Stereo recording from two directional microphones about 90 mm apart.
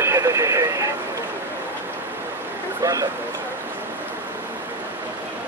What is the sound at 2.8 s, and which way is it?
Speech, 40° right (ahead or behind).